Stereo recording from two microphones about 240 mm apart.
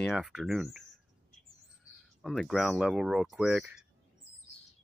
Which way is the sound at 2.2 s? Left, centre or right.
Centre.